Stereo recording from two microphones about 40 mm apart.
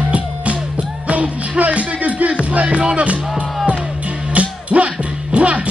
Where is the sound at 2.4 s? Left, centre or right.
Right.